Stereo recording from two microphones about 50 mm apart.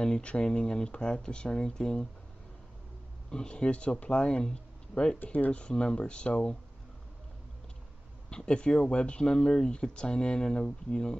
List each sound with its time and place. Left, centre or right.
0.0 s speech: left
3.3 s speech: centre
5.2 s speech: left
8.3 s speech: centre